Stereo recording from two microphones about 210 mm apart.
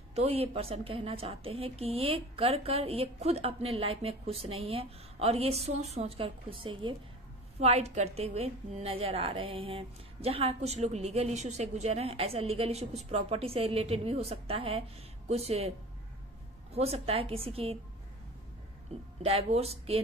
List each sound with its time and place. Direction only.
0.1 s a woman's voice: 30° right (ahead or behind)
16.7 s a woman's voice: 30° right (ahead or behind)
18.9 s a woman's voice: 30° right (ahead or behind)